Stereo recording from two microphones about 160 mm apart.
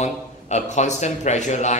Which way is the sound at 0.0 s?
45° left (ahead or behind).